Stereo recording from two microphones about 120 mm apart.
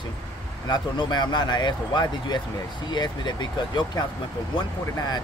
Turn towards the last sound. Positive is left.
turn(degrees=30)  # may be behind; listen again after turning